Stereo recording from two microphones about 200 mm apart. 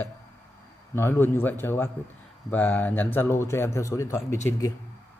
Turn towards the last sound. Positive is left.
turn(degrees=15)  # may be behind; listen again after turning